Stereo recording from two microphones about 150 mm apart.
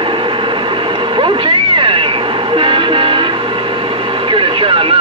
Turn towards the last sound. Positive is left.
turn(degrees=-35)  # may be behind; listen again after turning